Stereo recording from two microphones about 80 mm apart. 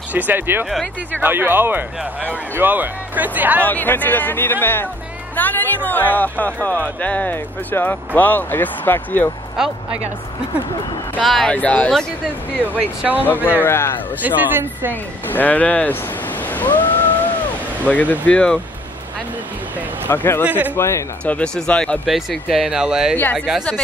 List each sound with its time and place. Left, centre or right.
0.1 s speech: right
3.6 s speech: left
9.6 s speech: centre
11.2 s speech: centre
11.5 s speech: centre
12.6 s speech: right
13.2 s speech: left
14.2 s speech: right
15.2 s speech: left
20.1 s speech: left
20.4 s speech: centre
20.7 s speech: left
21.2 s speech: centre
22.0 s speech: centre